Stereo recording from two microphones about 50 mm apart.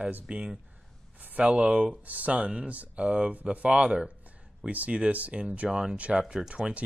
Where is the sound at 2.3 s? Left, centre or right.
Right.